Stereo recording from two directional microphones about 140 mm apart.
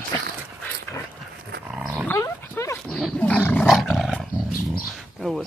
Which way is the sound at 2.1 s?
20° left (ahead or behind).